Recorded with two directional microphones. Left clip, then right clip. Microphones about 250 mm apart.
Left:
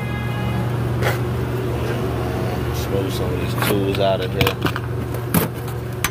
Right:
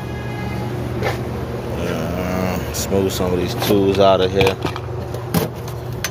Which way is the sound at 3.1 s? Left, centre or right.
Right.